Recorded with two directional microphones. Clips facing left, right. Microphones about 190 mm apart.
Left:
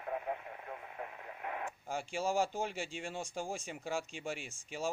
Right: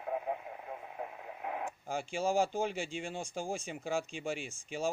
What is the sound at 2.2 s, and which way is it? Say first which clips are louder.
Speech: right 3 dB; 30° right (ahead or behind).